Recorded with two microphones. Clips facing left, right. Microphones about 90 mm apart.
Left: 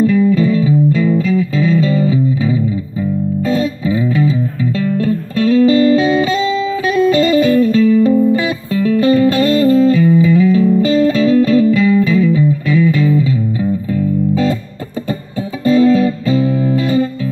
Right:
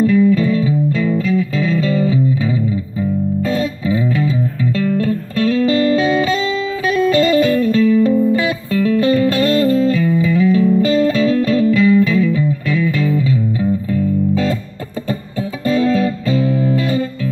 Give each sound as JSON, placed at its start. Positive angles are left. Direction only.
{"t": 0.0, "sound": "music", "side_deg": 10}
{"t": 7.4, "sound": "music", "side_deg": 20}
{"t": 7.7, "sound": "music", "side_deg": 10}
{"t": 15.6, "sound": "music", "side_deg": 10}